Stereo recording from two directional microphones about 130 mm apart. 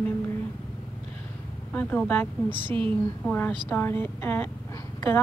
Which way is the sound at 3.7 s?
15° left (ahead or behind).